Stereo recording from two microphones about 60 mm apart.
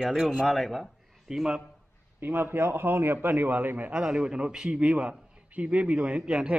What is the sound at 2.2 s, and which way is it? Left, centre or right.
A man's voice, right.